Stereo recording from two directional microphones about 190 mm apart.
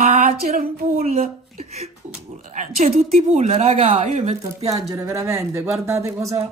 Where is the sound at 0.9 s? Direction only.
35° right (ahead or behind).